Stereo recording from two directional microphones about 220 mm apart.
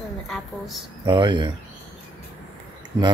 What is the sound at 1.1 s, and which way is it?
Speech, 20° right (ahead or behind).